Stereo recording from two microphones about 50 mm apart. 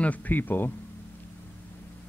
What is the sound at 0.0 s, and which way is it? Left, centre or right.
Speech, left.